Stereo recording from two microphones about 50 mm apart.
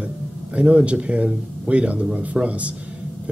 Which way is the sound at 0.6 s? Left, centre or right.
Right.